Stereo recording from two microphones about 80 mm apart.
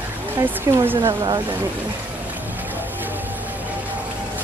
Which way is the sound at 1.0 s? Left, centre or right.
Right.